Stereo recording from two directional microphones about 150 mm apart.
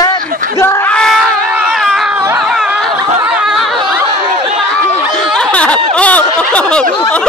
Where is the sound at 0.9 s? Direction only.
5° left (ahead or behind).